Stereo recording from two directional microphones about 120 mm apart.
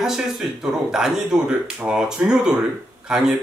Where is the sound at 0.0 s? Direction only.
5° right (ahead or behind).